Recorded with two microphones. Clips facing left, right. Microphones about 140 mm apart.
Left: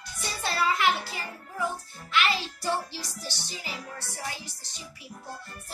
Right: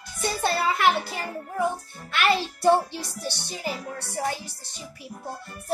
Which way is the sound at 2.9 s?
55° right (ahead or behind).